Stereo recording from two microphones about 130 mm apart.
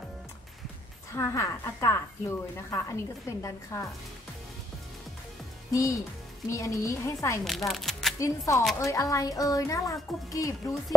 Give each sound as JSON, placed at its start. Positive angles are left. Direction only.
{"t": 1.1, "sound": "speech", "side_deg": 25}
{"t": 5.7, "sound": "speech", "side_deg": 25}
{"t": 7.4, "sound": "speech", "side_deg": 0}
{"t": 8.2, "sound": "speech", "side_deg": 25}